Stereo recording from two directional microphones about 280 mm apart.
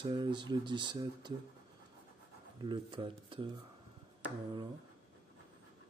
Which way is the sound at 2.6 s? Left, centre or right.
Centre.